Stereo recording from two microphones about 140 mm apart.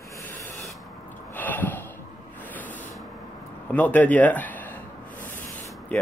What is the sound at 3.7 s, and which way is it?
Speech, 10° left (ahead or behind).